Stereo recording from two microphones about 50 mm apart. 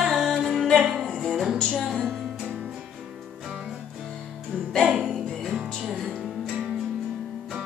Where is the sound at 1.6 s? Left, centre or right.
Left.